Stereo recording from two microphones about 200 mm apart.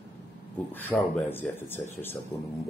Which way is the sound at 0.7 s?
10° left (ahead or behind).